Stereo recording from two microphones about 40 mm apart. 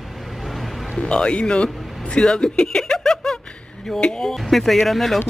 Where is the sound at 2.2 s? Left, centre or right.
Centre.